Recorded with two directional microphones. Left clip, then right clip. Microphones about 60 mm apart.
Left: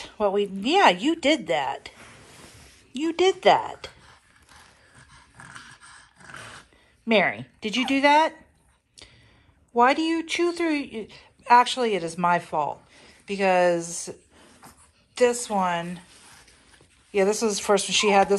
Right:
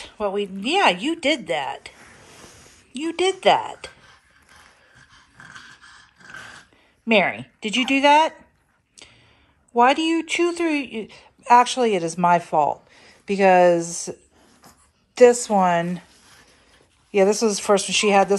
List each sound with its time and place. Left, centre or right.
0.0 s speech: centre
7.1 s a woman's voice: centre
9.8 s a woman's voice: centre
11.1 s speech: right
13.6 s speech: right
15.1 s a woman's voice: right
17.1 s speech: right